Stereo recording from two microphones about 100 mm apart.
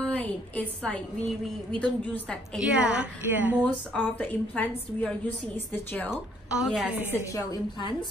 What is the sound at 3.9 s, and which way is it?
A woman's voice, 15° left (ahead or behind).